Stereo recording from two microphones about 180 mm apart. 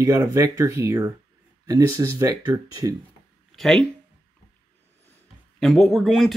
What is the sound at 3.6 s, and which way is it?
Speech, centre (ahead or behind).